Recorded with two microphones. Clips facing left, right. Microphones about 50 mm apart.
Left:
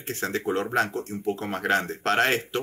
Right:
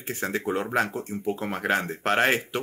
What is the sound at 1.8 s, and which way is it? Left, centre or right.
Speech, right.